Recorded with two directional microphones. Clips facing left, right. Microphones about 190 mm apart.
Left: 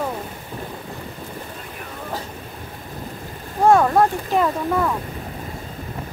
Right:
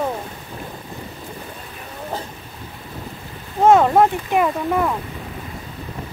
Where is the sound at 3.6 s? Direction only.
20° right (ahead or behind).